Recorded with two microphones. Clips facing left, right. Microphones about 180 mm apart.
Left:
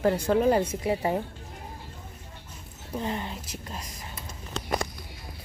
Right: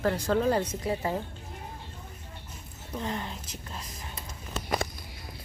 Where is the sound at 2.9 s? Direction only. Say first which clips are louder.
Left 2 dB; 10° left (ahead or behind).